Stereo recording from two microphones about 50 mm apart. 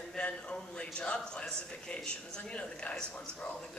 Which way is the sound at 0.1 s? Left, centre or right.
Centre.